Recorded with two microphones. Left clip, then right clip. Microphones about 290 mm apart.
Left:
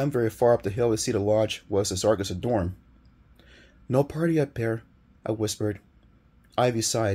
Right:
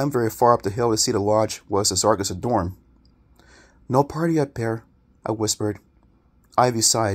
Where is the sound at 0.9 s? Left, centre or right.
Centre.